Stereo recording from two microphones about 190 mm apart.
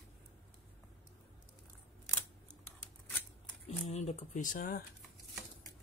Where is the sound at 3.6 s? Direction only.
35° left (ahead or behind).